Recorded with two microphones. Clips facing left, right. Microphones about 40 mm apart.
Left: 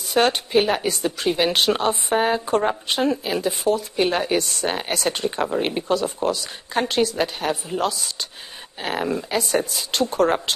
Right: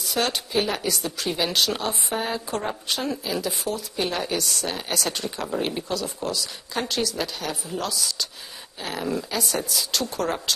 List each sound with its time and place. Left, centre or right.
0.1 s a woman's voice: left
9.8 s speech: left